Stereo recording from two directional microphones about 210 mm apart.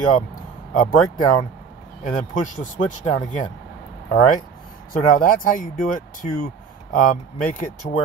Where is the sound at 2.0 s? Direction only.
40° left (ahead or behind).